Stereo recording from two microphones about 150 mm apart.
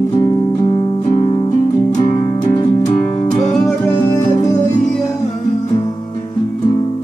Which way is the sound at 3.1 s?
45° left (ahead or behind).